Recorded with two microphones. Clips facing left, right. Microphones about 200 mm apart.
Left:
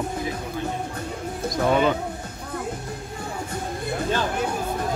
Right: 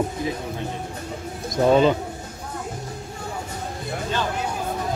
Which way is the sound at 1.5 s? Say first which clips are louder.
Right 4 dB; 25° right (ahead or behind).